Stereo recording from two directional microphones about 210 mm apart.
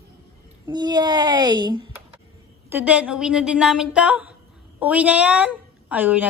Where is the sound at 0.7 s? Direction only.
20° right (ahead or behind).